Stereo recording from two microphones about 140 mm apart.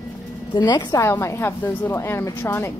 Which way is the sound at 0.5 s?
30° left (ahead or behind).